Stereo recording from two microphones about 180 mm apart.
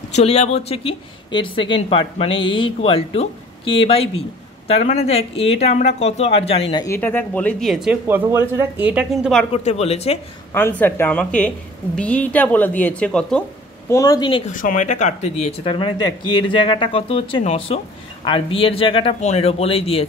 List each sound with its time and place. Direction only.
0.1 s speech: 35° left (ahead or behind)
6.7 s speech: 20° left (ahead or behind)
7.0 s speech: 10° left (ahead or behind)
9.5 s speech: 35° left (ahead or behind)
10.5 s a woman's voice: 10° left (ahead or behind)
13.8 s speech: 20° left (ahead or behind)
14.5 s speech: 50° left (ahead or behind)
15.6 s speech: 30° left (ahead or behind)